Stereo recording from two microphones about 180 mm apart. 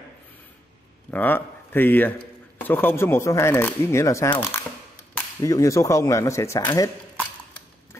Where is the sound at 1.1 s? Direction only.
10° left (ahead or behind).